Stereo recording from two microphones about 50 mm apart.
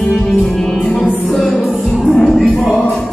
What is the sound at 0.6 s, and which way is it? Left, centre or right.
Music, centre.